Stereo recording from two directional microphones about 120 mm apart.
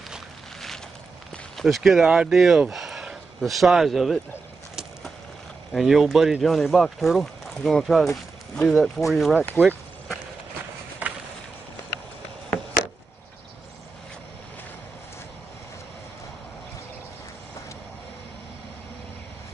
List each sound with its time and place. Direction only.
0.1 s a sound: centre (ahead or behind)
1.3 s speech: centre (ahead or behind)
5.7 s speech: centre (ahead or behind)
9.6 s speech: 15° right (ahead or behind)
11.0 s chop: 15° right (ahead or behind)